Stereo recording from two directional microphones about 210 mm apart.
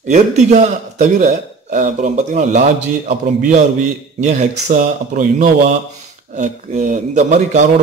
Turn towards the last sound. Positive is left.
turn(degrees=-35)  # may be behind; listen again after turning